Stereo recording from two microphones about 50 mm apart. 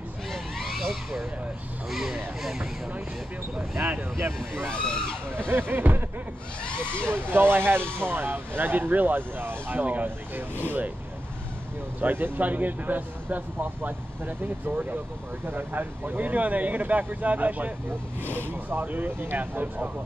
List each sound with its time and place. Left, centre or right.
0.3 s a sound: centre
1.9 s speech: centre
3.5 s speech: right
4.2 s speech: right
4.7 s speech: centre
5.5 s speech: right
6.6 s speech: left
7.0 s speech: right
12.0 s speech: right
18.2 s speech: left
18.5 s speech: right